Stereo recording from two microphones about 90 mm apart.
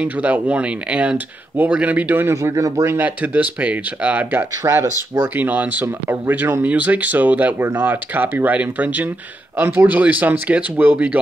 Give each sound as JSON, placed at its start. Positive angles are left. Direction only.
{"t": 0.0, "sound": "speech", "side_deg": -15}
{"t": 2.3, "sound": "speech", "side_deg": -35}